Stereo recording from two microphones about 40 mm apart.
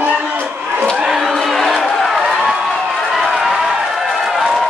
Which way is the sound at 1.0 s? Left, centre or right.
Centre.